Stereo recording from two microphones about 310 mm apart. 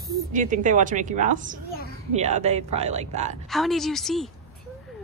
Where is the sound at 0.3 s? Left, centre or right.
Right.